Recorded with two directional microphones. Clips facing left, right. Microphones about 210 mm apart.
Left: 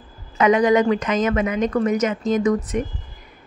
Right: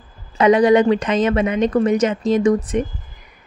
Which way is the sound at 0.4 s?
30° right (ahead or behind).